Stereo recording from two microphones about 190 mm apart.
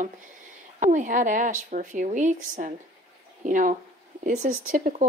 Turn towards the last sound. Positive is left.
turn(degrees=-40)  # may be behind; listen again after turning